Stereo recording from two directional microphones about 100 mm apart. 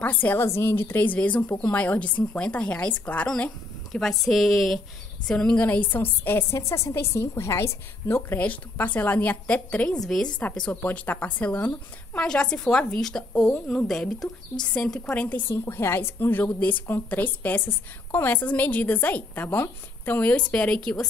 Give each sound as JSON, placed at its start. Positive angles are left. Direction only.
{"t": 0.0, "sound": "a woman's voice", "side_deg": 15}
{"t": 12.3, "sound": "speech", "side_deg": 10}